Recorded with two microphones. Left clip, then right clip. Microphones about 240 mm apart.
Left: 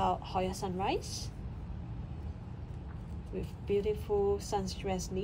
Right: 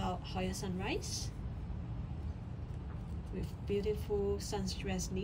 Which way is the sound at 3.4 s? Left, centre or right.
Centre.